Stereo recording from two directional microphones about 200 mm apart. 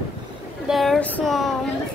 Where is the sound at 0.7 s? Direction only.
Centre (ahead or behind).